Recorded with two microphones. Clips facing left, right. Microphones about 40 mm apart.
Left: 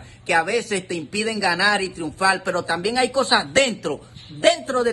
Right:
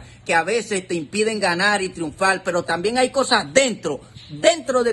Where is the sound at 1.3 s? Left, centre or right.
Right.